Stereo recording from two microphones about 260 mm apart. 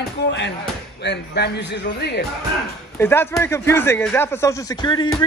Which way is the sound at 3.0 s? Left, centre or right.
Centre.